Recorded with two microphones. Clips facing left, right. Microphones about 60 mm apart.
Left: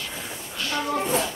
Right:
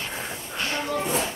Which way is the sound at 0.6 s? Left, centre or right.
Right.